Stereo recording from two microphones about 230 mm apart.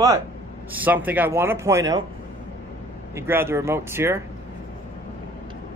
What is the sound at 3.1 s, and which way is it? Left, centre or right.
Speech, centre.